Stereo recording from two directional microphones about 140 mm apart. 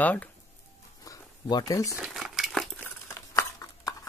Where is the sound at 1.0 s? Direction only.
25° left (ahead or behind).